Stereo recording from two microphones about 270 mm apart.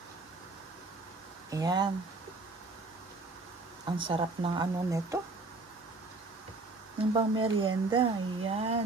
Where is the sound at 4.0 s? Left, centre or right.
Centre.